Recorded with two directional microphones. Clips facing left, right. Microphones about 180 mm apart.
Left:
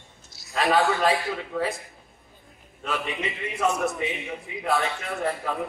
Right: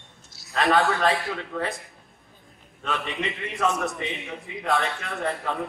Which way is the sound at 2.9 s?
Centre (ahead or behind).